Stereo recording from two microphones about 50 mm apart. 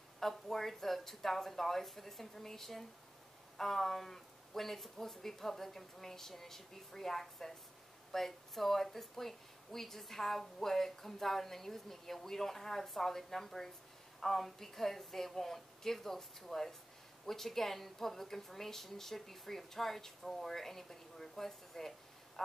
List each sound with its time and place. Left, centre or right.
0.2 s speech: centre